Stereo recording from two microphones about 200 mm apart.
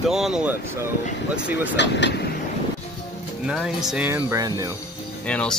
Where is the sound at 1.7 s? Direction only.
60° left (ahead or behind).